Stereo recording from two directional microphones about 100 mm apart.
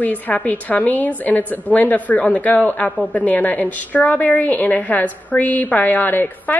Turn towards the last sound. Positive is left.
turn(degrees=20)  # may be behind; listen again after turning